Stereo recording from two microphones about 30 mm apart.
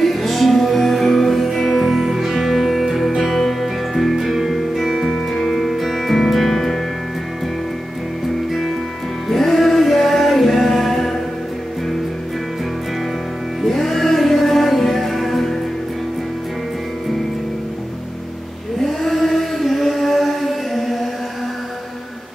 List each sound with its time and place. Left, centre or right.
0.0 s music: centre
9.3 s music: centre
13.7 s music: centre
19.0 s music: centre